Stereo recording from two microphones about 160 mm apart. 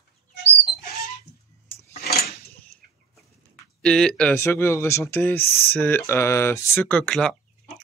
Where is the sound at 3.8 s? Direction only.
5° left (ahead or behind).